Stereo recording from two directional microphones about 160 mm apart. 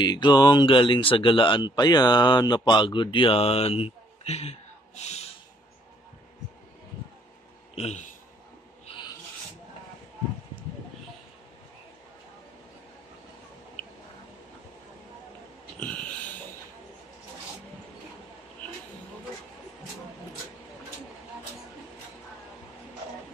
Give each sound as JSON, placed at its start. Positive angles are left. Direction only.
{"t": 0.0, "sound": "speech", "side_deg": 25}
{"t": 7.7, "sound": "speech", "side_deg": 40}
{"t": 8.8, "sound": "filing", "side_deg": 30}
{"t": 15.8, "sound": "a sound", "side_deg": 5}